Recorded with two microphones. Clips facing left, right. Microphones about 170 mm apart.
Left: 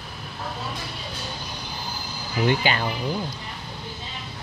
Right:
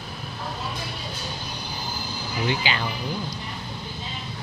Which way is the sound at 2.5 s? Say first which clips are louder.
Left 4 dB; 50° left (ahead or behind).